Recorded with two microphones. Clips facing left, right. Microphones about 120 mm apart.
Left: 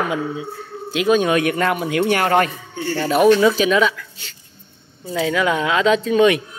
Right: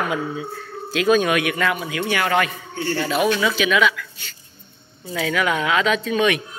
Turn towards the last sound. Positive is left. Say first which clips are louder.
# left 5 dB
turn(degrees=30)  # may be behind; listen again after turning